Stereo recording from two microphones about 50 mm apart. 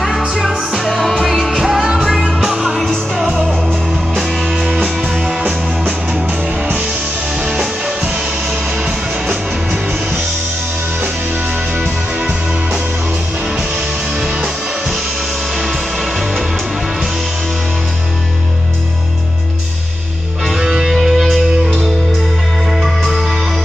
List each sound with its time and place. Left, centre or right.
0.4 s music: centre
4.2 s music: centre
12.2 s music: centre
14.2 s music: centre
20.4 s music: centre
22.8 s music: centre